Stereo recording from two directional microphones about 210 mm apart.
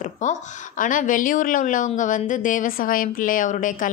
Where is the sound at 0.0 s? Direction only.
40° left (ahead or behind).